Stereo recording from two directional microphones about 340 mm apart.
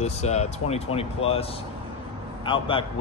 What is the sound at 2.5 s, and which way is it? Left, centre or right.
Speech, centre.